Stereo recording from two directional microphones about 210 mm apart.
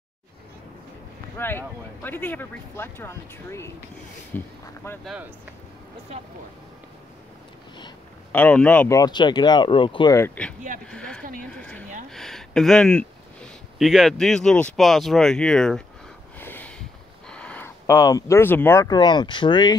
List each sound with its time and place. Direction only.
1.4 s speech: 10° left (ahead or behind)
5.0 s speech: 5° right (ahead or behind)
8.3 s speech: 10° left (ahead or behind); by 10.1 s 25° left (ahead or behind)
10.1 s speech: 10° left (ahead or behind)
11.5 s a sound: 5° left (ahead or behind)
12.1 s speech: centre (ahead or behind)
16.3 s a sound: 10° left (ahead or behind)
17.3 s speech: 5° left (ahead or behind); by 19.7 s 20° left (ahead or behind)